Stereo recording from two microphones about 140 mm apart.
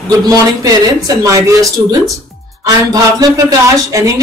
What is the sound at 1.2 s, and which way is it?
Speech, 25° right (ahead or behind).